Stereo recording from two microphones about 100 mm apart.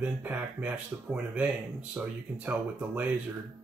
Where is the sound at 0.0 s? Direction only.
15° right (ahead or behind).